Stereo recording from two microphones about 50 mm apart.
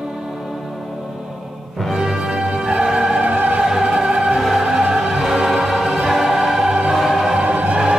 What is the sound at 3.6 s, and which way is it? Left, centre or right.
Music, centre.